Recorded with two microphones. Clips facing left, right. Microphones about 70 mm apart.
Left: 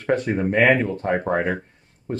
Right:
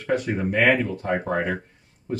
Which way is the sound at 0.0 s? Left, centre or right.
Left.